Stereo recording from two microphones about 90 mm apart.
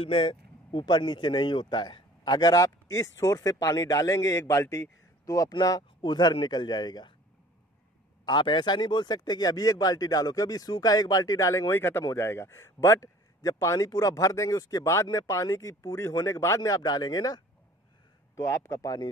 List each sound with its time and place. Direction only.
0.0 s speech: 75° left (ahead or behind); by 5.5 s 40° left (ahead or behind)
5.5 s a man's voice: 50° left (ahead or behind)
8.3 s speech: 60° left (ahead or behind); by 17.4 s 45° left (ahead or behind)
18.3 s speech: 35° left (ahead or behind)